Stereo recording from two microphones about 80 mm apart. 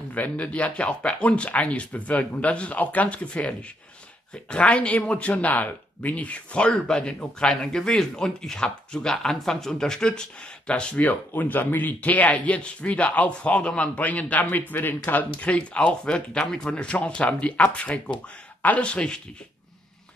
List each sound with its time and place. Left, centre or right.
0.1 s speech: centre